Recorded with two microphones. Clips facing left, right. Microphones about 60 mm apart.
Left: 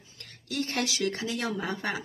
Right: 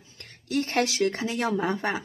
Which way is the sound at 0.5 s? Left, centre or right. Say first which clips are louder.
Right 5 dB; right.